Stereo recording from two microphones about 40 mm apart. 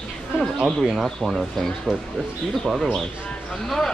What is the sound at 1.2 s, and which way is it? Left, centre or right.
Speech, centre.